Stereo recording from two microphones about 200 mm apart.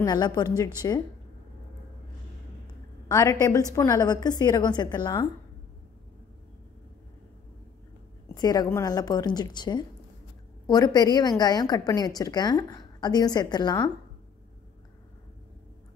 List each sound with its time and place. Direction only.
0.0 s a woman's voice: 20° left (ahead or behind)
3.1 s a woman's voice: 15° left (ahead or behind)
8.4 s a woman's voice: 20° left (ahead or behind)